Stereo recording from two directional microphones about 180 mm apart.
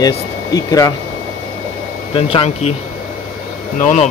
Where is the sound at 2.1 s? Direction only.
30° left (ahead or behind).